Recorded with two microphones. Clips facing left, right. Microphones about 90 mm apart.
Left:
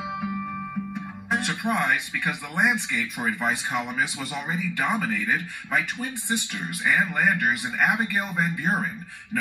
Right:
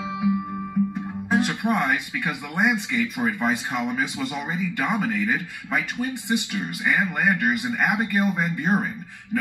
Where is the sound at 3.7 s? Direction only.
10° left (ahead or behind).